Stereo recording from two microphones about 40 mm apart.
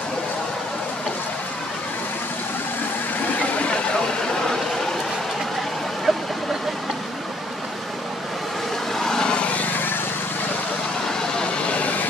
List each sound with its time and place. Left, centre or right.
6.1 s vehicle: centre
8.9 s vehicle: centre
9.4 s vehicle: left
11.7 s vehicle: left